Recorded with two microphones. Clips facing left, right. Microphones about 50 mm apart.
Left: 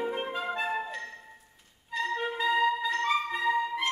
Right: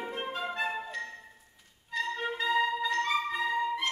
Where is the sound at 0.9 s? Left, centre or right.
Centre.